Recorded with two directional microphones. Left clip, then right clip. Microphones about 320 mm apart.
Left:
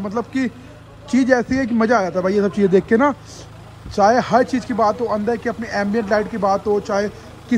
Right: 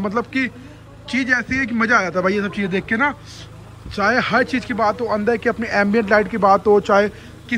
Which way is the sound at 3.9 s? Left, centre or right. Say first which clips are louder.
Left 3 dB; centre.